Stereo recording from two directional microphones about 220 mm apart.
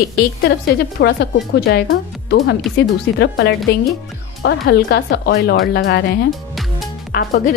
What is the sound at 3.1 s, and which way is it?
A woman's voice, 50° left (ahead or behind).